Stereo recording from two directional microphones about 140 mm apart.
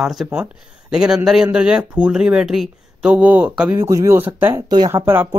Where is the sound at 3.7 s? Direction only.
20° right (ahead or behind).